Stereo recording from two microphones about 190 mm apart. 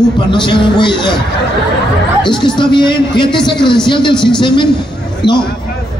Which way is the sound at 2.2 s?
25° left (ahead or behind).